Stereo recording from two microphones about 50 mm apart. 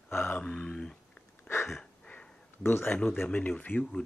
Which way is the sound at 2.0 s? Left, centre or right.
Centre.